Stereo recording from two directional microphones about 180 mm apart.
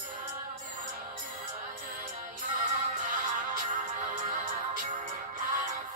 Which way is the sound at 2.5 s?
45° right (ahead or behind).